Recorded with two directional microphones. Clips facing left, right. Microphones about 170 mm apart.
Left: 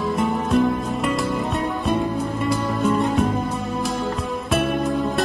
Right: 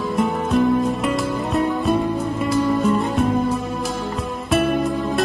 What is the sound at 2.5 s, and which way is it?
Music, centre (ahead or behind).